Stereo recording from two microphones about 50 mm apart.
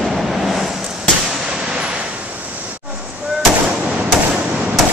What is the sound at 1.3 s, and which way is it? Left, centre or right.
Fireworks, centre.